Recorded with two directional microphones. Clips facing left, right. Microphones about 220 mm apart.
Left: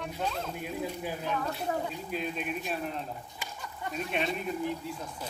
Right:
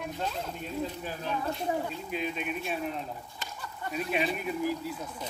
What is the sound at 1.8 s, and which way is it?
Speech, centre (ahead or behind).